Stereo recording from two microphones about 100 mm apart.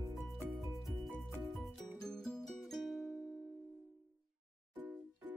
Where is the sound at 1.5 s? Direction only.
5° left (ahead or behind).